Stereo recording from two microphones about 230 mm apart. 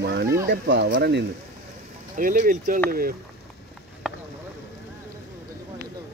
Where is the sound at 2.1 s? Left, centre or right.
Right.